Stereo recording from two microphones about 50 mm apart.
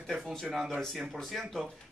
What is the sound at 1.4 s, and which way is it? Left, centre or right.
Speech, centre.